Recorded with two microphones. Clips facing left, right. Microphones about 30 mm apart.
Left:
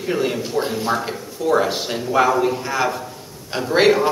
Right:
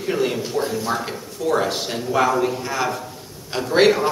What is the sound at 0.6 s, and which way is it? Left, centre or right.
Speech, left.